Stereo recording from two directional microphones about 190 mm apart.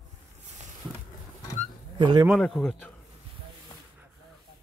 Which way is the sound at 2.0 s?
25° right (ahead or behind).